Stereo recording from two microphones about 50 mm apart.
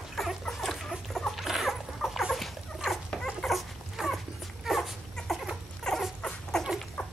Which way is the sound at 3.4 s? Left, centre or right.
Centre.